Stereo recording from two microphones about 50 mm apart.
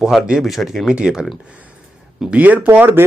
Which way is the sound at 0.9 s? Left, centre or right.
Centre.